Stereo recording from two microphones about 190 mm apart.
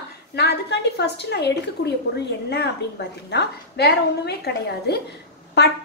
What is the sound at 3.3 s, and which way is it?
A woman's voice, 60° left (ahead or behind).